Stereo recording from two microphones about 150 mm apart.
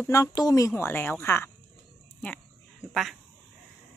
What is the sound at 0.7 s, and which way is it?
Speech, 15° left (ahead or behind).